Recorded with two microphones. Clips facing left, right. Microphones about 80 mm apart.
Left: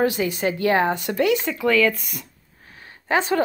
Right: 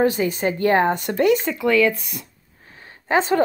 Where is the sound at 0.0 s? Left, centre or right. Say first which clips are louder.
Right 2 dB; right.